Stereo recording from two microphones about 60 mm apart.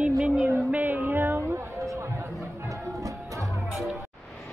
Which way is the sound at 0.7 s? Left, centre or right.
Right.